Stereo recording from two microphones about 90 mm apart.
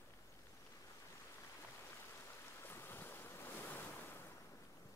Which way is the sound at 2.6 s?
25° left (ahead or behind).